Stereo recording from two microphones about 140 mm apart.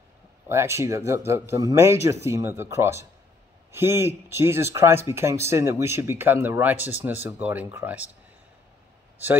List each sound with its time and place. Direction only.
0.5 s speech: 20° right (ahead or behind)